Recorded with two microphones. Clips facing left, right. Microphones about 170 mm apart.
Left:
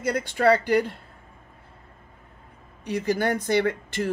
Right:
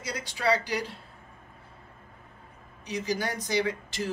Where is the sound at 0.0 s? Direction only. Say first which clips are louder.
Left 8 dB; 55° left (ahead or behind).